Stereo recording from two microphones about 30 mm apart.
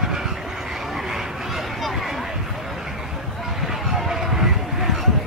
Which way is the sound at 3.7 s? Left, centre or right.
Centre.